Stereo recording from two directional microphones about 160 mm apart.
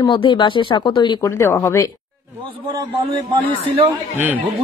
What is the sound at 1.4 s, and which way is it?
Speech, 15° left (ahead or behind).